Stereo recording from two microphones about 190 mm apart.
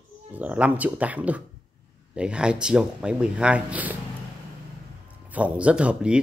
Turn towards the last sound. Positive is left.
turn(degrees=-5)  # may be behind; listen again after turning